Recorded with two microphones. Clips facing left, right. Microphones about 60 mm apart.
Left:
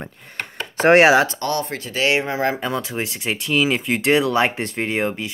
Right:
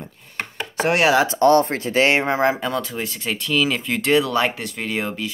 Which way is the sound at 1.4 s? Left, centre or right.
Right.